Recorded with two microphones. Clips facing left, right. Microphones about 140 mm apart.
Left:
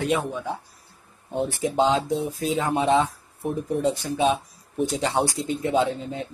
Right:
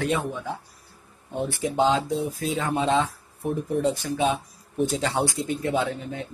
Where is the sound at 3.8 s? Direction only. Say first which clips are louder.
Even; 20° left (ahead or behind).